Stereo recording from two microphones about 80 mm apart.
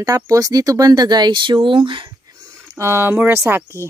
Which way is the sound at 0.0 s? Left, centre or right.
Right.